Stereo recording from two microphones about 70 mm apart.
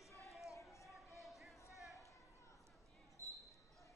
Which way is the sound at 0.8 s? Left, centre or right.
Centre.